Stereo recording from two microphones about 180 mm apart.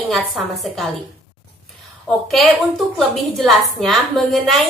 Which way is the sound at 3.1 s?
Centre (ahead or behind).